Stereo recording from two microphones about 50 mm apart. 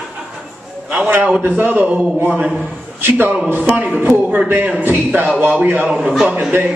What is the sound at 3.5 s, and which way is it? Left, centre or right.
Speech, right.